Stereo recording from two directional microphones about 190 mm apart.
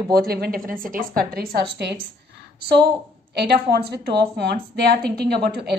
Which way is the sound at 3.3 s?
60° right (ahead or behind).